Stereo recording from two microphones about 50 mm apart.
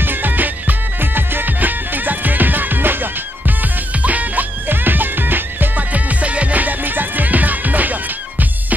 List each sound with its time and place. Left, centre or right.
0.0 s music: right